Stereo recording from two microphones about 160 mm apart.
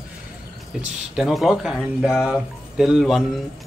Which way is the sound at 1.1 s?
Centre (ahead or behind).